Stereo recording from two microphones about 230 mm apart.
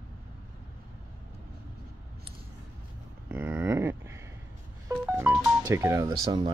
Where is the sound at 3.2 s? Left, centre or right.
Centre.